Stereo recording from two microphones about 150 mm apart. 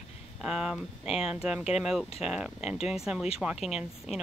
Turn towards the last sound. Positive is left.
turn(degrees=-5)  # may be behind; listen again after turning